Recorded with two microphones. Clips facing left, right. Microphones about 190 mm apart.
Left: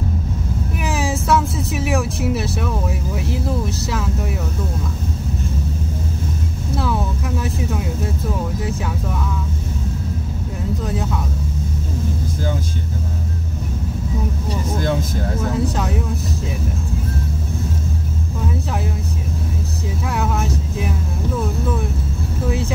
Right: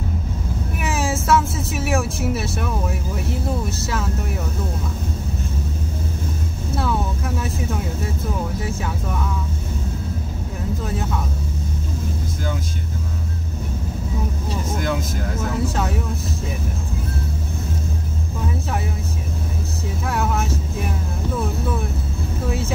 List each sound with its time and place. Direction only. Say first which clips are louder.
0.7 s speech: left 1 dB; centre (ahead or behind)
3.8 s speech: left 1 dB; centre (ahead or behind)
6.8 s speech: left 1 dB; centre (ahead or behind)
14.8 s speech: left 3 dB; 30° left (ahead or behind)
15.6 s speech: left 1 dB; centre (ahead or behind)